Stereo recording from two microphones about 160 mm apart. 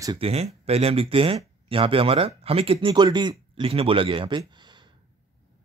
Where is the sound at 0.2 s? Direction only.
40° right (ahead or behind).